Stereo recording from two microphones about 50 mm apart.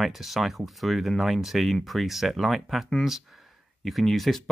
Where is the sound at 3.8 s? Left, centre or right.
Centre.